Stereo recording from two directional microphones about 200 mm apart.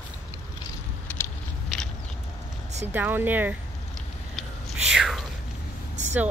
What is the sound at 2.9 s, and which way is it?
Speech, 10° right (ahead or behind).